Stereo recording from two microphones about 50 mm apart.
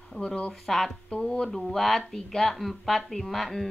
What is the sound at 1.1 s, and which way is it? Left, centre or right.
Speech, centre.